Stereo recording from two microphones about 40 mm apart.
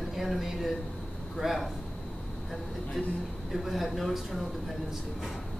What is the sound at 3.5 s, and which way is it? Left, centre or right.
Speech, centre.